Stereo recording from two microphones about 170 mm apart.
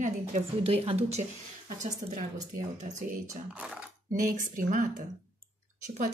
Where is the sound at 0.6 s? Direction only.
35° right (ahead or behind).